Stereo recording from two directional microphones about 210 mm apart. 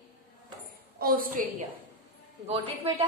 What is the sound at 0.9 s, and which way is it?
Speech, 45° right (ahead or behind).